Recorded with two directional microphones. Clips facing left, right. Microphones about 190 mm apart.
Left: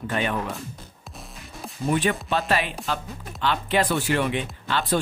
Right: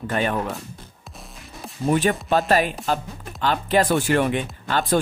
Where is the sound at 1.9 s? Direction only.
40° right (ahead or behind).